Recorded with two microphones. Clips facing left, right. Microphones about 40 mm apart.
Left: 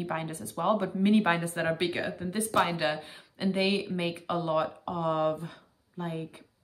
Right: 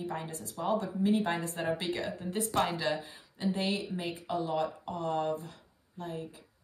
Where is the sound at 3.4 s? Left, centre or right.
Left.